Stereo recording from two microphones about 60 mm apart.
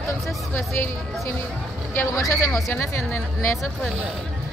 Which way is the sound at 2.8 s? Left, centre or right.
Left.